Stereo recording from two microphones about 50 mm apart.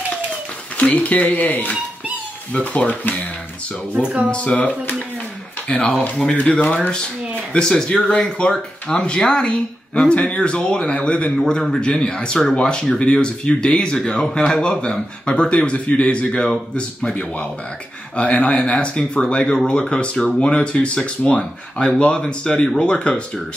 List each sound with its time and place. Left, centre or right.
0.7 s speech: left
3.9 s speech: right
4.6 s speech: left
5.7 s speech: centre
7.5 s speech: centre